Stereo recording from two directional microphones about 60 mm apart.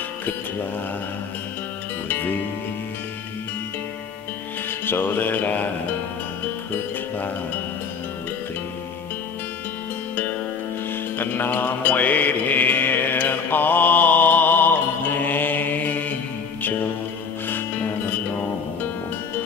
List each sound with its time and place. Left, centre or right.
2.0 s music: left
4.6 s music: left
11.1 s mantra: left